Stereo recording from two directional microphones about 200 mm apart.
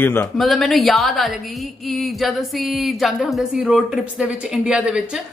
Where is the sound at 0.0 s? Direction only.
10° left (ahead or behind).